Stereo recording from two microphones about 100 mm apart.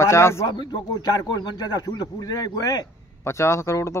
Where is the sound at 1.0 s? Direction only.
40° left (ahead or behind).